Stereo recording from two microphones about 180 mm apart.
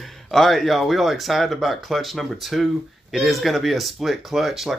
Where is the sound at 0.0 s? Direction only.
Centre (ahead or behind).